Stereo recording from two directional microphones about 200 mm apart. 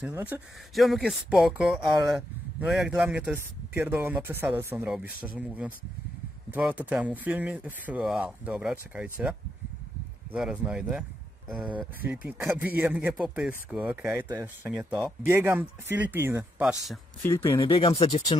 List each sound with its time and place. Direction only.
0.0 s speech: 10° right (ahead or behind)
6.5 s speech: 10° right (ahead or behind)
17.2 s speech: 10° left (ahead or behind)
17.6 s speech: 25° left (ahead or behind)